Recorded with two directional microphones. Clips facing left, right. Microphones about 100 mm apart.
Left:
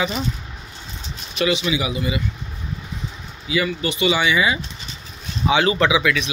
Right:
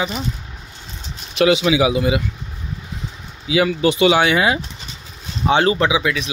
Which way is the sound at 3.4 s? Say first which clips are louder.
Right 6 dB; 90° right.